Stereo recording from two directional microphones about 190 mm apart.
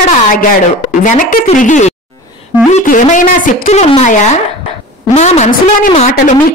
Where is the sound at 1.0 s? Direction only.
40° left (ahead or behind).